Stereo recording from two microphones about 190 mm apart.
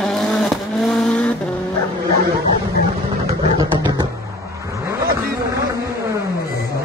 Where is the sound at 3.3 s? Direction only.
20° right (ahead or behind).